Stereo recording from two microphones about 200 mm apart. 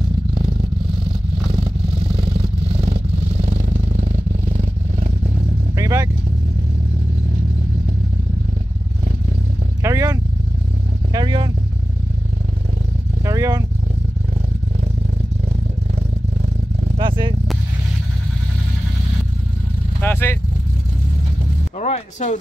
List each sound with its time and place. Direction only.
3.3 s vehicle: 30° right (ahead or behind)
5.8 s vehicle: 15° right (ahead or behind)
9.8 s vehicle: 15° right (ahead or behind)
13.2 s vehicle: 15° right (ahead or behind)
17.0 s vehicle: 25° right (ahead or behind)
20.0 s vehicle: 10° left (ahead or behind)
21.7 s music: 35° left (ahead or behind)